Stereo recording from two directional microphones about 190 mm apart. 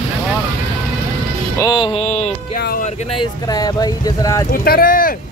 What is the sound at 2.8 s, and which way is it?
Speech, 30° left (ahead or behind).